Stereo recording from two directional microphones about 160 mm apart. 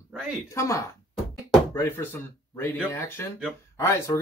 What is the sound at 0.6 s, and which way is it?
Speech, 20° left (ahead or behind).